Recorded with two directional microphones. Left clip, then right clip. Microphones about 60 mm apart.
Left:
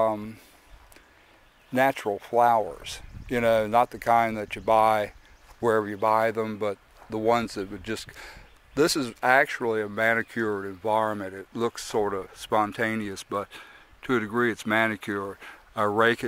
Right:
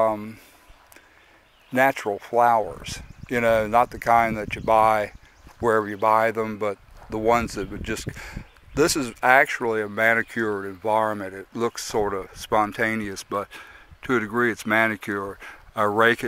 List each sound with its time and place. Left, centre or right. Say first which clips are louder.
0.0 s speech: right 3 dB; centre
1.7 s speech: right 3 dB; centre